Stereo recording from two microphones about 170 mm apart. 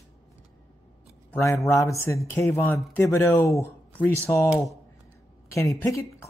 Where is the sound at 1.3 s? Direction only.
15° left (ahead or behind).